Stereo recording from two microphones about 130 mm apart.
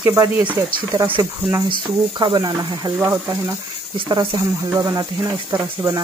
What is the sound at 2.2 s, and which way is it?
Speech, 35° right (ahead or behind).